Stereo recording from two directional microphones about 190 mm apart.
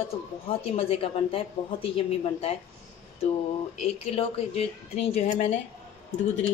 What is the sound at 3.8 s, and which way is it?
A woman's voice, 35° left (ahead or behind).